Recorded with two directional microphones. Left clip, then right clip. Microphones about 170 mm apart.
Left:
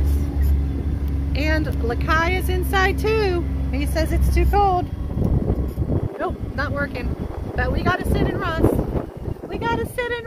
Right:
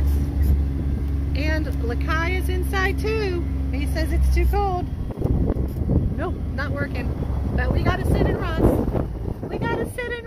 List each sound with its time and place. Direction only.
1.4 s speech: 20° left (ahead or behind)
6.2 s speech: 15° left (ahead or behind)